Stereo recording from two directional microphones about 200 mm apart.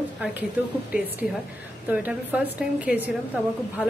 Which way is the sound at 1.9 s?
5° right (ahead or behind).